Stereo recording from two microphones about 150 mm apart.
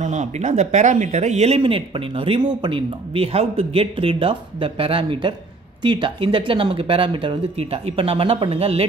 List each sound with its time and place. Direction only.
0.0 s speech: 50° right (ahead or behind)